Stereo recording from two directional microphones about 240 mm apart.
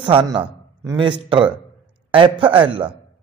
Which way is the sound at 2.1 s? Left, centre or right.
Right.